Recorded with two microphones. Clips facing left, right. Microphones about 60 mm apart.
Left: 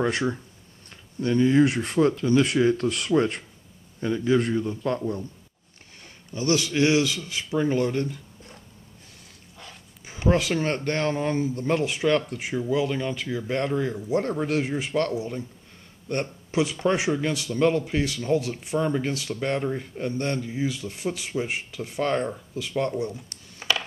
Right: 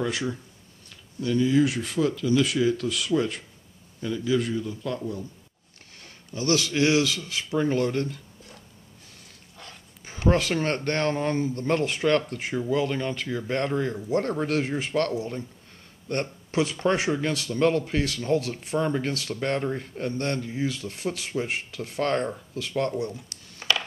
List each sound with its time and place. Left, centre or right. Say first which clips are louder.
0.8 s speech: left 2 dB; left
6.3 s speech: left 1 dB; centre
7.5 s speech: left 1 dB; centre
9.6 s dog: even; centre
10.5 s speech: even; centre
14.0 s speech: even; centre
14.3 s speech: even; centre
18.8 s speech: left 1 dB; centre
22.9 s a sound: left 1 dB; centre